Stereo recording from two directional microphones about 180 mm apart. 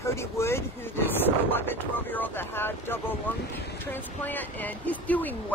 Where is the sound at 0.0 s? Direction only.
15° left (ahead or behind).